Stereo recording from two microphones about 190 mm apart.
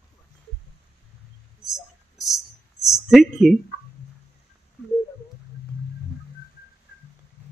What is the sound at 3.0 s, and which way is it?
Speech, centre (ahead or behind).